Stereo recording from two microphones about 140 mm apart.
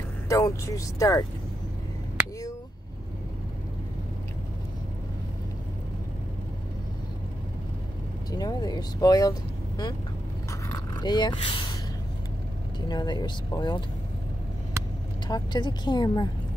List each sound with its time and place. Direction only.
0.3 s speech: 20° left (ahead or behind)
8.3 s speech: 30° left (ahead or behind)
11.0 s speech: 30° left (ahead or behind)
12.8 s speech: 30° left (ahead or behind)
15.2 s speech: 30° left (ahead or behind)